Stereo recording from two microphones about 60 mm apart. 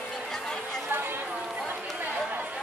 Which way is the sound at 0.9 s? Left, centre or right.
Right.